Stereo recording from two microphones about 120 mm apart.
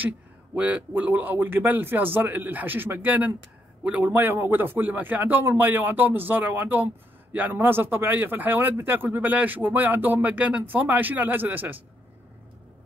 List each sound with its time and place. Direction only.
0.6 s speech: 10° right (ahead or behind)